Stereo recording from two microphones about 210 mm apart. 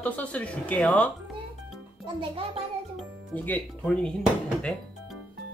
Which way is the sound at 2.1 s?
25° right (ahead or behind).